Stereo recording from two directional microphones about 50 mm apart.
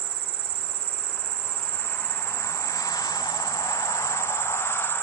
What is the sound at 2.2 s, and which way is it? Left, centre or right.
Cricket, left.